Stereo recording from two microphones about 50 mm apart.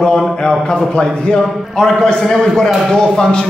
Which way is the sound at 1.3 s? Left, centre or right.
Centre.